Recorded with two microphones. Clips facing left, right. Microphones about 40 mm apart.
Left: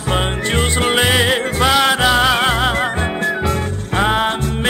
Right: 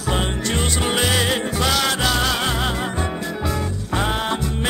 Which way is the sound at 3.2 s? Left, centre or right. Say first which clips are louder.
Left 7 dB; left.